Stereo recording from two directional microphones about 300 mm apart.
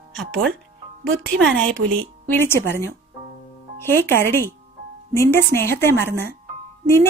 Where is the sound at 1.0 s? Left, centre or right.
Right.